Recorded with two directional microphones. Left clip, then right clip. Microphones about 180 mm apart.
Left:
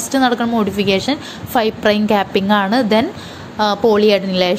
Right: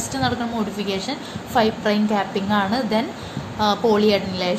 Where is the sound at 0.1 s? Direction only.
40° left (ahead or behind).